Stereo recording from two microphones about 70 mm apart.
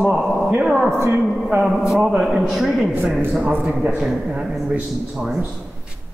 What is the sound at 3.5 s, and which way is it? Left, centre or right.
A man's voice, right.